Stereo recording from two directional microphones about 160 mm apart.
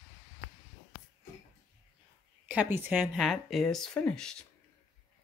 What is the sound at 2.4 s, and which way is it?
Speech, 10° right (ahead or behind).